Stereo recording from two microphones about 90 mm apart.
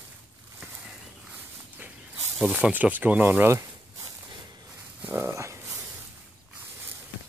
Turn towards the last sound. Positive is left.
turn(degrees=-20)  # may be behind; listen again after turning